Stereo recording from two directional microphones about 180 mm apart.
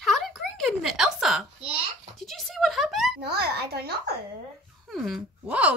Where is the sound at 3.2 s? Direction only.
65° right (ahead or behind).